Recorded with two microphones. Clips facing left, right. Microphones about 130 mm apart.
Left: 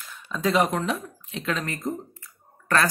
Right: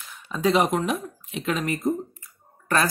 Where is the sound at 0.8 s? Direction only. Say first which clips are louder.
Right 2 dB; 15° right (ahead or behind).